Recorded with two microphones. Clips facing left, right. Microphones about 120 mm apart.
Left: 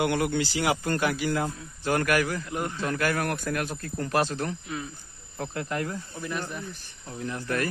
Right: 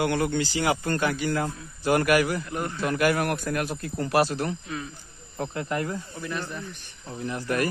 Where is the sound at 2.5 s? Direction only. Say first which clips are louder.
Even; 15° left (ahead or behind).